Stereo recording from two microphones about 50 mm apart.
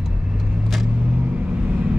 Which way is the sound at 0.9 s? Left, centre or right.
Right.